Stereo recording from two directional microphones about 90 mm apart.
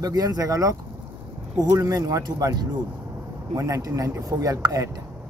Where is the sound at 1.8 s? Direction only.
40° right (ahead or behind).